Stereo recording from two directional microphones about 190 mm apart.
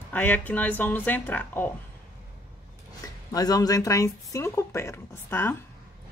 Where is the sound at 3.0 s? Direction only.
20° left (ahead or behind).